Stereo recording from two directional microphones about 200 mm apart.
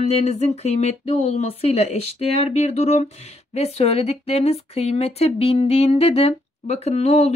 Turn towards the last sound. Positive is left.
turn(degrees=35)  # may be behind; listen again after turning